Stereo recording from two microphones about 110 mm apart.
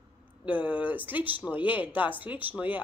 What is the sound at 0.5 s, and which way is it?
Speech, 15° right (ahead or behind).